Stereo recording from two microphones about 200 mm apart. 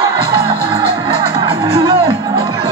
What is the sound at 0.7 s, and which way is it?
Music, 25° right (ahead or behind).